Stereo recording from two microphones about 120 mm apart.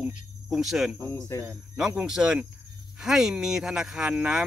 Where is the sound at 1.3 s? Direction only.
25° left (ahead or behind).